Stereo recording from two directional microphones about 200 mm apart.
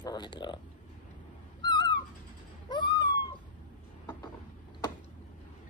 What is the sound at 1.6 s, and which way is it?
Owl, 20° left (ahead or behind).